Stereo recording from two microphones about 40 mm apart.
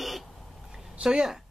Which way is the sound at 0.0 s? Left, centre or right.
Centre.